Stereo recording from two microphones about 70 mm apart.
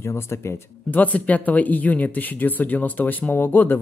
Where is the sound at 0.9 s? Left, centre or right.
Left.